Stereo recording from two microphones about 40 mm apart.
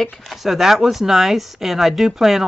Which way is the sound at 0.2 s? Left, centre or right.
Centre.